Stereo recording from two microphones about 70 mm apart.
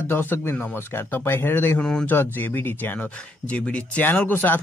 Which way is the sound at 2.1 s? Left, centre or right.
Left.